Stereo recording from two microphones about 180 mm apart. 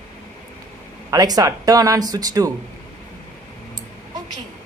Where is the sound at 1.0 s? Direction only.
20° right (ahead or behind).